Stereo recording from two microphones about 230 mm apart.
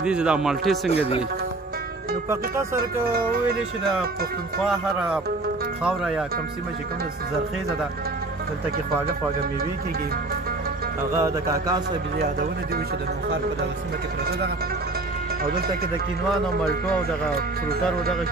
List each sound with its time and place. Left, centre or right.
0.0 s a man's voice: centre
0.8 s a man's voice: left
2.2 s speech: centre
5.9 s a man's voice: centre
11.2 s speech: centre